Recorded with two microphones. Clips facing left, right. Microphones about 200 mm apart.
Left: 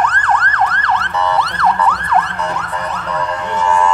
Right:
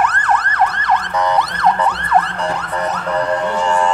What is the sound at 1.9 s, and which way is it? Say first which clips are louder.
Emergency vehicle: even; 30° right (ahead or behind).